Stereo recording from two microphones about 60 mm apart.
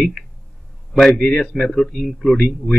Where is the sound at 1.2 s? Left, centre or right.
Centre.